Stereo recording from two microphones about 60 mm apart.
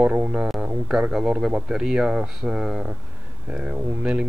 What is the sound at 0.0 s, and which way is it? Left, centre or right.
Speech, centre.